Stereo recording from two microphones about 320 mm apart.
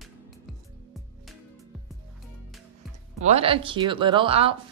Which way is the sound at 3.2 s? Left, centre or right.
Centre.